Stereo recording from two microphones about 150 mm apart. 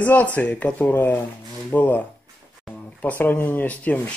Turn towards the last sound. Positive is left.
turn(degrees=10)  # may be behind; listen again after turning